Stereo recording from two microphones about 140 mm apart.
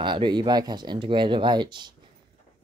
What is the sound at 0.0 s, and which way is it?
Speech, 35° right (ahead or behind).